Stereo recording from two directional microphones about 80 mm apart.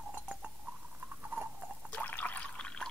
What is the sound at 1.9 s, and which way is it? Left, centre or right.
Water, left.